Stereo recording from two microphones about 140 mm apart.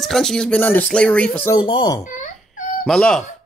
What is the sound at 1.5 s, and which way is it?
Speech, 35° left (ahead or behind).